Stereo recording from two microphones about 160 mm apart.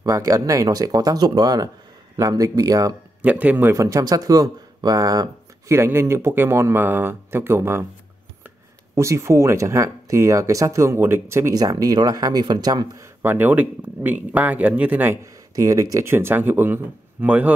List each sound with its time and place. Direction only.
0.0 s speech: 20° right (ahead or behind)
3.2 s a man's voice: 10° right (ahead or behind)
8.9 s speech: 20° right (ahead or behind)
13.2 s a man's voice: 15° right (ahead or behind)
15.5 s a man's voice: 20° right (ahead or behind)